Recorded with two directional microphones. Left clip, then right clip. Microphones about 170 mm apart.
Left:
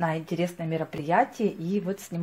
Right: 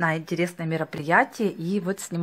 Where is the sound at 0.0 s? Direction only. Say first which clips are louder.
Right 3 dB; 30° right (ahead or behind).